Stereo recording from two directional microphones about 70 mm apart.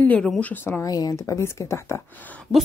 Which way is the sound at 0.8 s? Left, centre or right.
Left.